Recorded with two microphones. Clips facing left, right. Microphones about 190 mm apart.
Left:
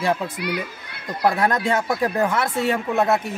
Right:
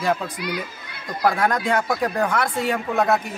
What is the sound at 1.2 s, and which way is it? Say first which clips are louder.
A man's voice: left 1 dB; centre (ahead or behind).